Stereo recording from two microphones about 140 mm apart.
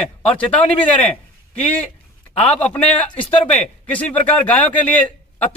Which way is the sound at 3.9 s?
10° left (ahead or behind).